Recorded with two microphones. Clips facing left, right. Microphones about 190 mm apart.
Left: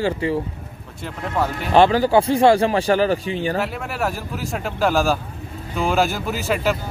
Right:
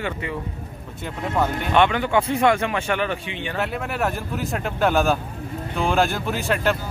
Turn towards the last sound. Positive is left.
turn(degrees=5)  # may be behind; listen again after turning